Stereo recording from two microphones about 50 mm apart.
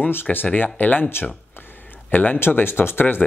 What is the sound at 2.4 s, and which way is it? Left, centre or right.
Speech, left.